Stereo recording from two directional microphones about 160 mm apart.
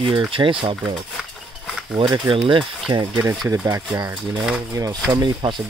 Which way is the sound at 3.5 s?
20° right (ahead or behind).